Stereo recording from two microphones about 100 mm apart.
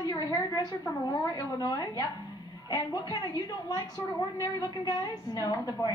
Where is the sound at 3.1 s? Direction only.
40° left (ahead or behind).